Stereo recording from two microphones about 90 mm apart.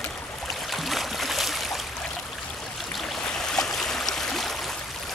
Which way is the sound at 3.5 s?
5° left (ahead or behind).